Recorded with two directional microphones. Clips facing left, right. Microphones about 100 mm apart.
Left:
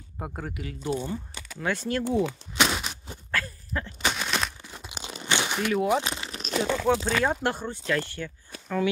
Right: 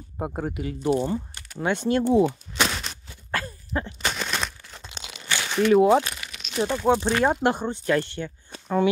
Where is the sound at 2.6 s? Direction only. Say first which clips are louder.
Left 1 dB; 5° left (ahead or behind).